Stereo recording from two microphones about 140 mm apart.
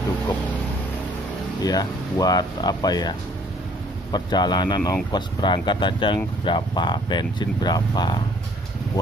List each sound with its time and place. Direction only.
1.6 s speech: 30° left (ahead or behind)